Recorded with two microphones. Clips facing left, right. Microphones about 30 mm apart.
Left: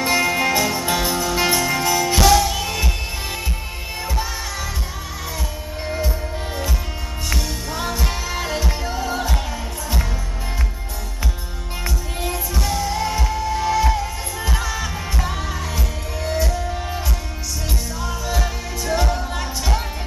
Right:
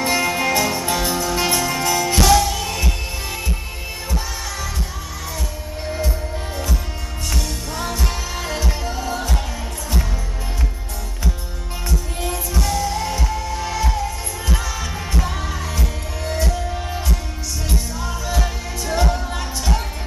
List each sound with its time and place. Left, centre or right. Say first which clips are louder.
0.0 s music: left 1 dB; centre
5.9 s music: even; centre
11.9 s music: right 2 dB; centre